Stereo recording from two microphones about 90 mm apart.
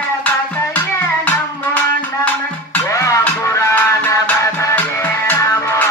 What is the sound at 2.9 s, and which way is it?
Music, 35° left (ahead or behind).